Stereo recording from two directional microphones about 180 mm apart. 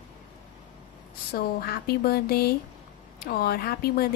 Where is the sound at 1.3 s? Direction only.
60° left (ahead or behind).